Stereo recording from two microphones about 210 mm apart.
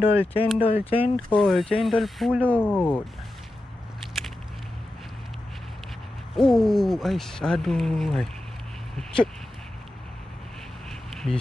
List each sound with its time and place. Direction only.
0.4 s speech: 5° right (ahead or behind)
0.8 s speech: 30° left (ahead or behind)
1.3 s speech: centre (ahead or behind)
4.0 s walk: centre (ahead or behind)
6.3 s speech: centre (ahead or behind)
10.9 s insect: centre (ahead or behind)